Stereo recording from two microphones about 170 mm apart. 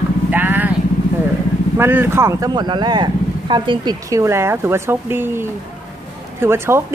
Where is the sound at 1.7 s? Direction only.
15° right (ahead or behind).